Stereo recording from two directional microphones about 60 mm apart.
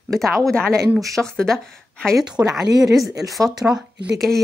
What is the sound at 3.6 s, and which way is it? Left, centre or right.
Speech, right.